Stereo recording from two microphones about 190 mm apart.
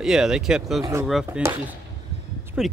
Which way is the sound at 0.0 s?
5° right (ahead or behind).